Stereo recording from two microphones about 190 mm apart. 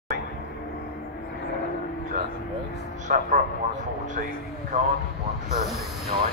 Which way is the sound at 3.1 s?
50° right (ahead or behind).